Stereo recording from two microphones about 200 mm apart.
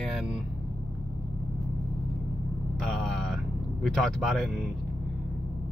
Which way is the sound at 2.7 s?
Centre (ahead or behind).